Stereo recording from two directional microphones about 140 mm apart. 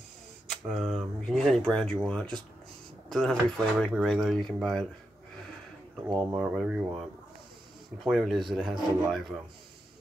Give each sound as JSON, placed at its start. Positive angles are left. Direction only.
{"t": 0.7, "sound": "speech", "side_deg": 0}
{"t": 6.3, "sound": "speech", "side_deg": -5}